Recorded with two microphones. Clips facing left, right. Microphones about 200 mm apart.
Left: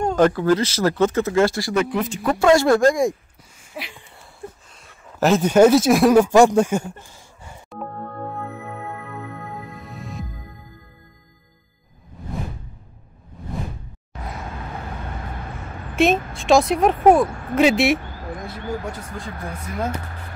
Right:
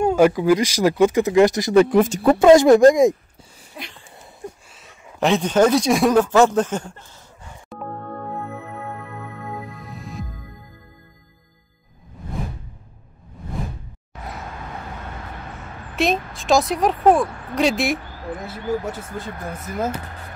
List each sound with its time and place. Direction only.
0.0 s speech: 10° right (ahead or behind)
1.8 s speech: 45° right (ahead or behind)
2.2 s speech: 20° right (ahead or behind)
3.8 s a sound: 5° left (ahead or behind)
4.6 s speech: centre (ahead or behind)
9.6 s music: centre (ahead or behind)
16.0 s speech: centre (ahead or behind)